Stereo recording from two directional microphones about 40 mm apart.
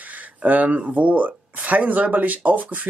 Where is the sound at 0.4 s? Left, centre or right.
Right.